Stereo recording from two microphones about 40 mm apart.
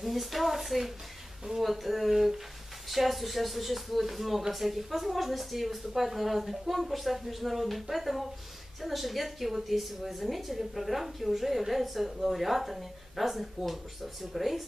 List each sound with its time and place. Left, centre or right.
0.0 s a woman's voice: centre